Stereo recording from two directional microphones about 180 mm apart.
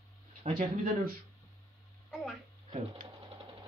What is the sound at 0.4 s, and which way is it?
Speech, 50° right (ahead or behind).